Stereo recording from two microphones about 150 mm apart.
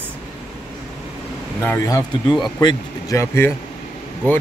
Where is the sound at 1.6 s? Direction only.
20° left (ahead or behind).